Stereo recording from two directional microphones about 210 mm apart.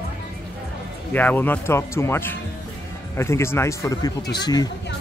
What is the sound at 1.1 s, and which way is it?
Speech, 10° left (ahead or behind).